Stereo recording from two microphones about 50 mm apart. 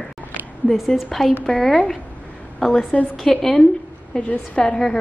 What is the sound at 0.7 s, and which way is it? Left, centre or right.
Speech, centre.